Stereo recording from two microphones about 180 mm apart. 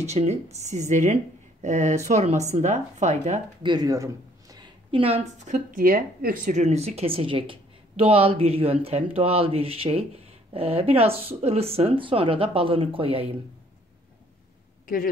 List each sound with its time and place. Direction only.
0.1 s a woman's voice: 35° right (ahead or behind)
3.6 s a woman's voice: 20° right (ahead or behind)